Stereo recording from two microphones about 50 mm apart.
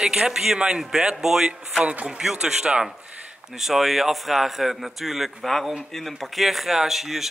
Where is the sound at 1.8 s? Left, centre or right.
Right.